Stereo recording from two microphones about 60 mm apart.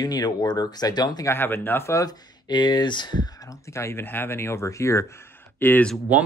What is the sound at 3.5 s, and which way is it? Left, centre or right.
Speech, left.